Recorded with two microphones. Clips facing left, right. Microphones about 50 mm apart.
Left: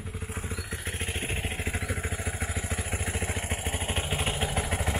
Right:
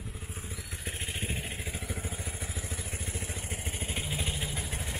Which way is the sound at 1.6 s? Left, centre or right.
Left.